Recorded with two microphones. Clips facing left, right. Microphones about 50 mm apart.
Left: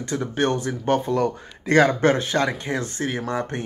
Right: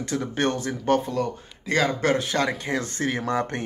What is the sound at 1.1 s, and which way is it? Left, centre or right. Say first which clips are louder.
Speech: left 4 dB; left.